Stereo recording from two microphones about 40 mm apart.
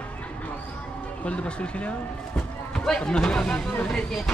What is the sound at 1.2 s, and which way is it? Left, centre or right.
Speech, left.